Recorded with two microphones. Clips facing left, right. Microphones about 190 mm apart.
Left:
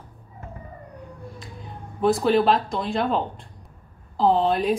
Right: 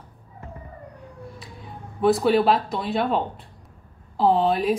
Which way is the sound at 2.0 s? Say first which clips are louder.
Right 1 dB; centre (ahead or behind).